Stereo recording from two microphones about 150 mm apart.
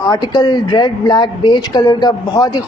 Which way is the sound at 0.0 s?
25° left (ahead or behind).